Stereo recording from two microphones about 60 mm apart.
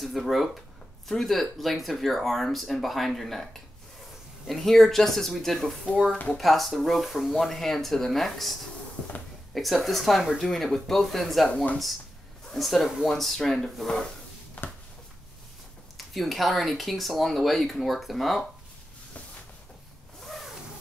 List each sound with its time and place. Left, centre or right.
0.0 s speech: centre
12.4 s speech: centre
14.6 s a sound: left
16.0 s speech: centre
20.2 s zipper: centre